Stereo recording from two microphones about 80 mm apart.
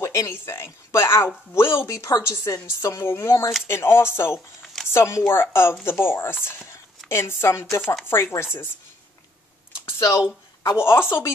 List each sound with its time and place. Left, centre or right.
0.0 s a woman's voice: left
9.8 s a woman's voice: left